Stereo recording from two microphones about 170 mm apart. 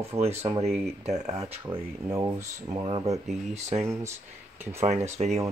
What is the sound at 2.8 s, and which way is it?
Speech, 30° right (ahead or behind).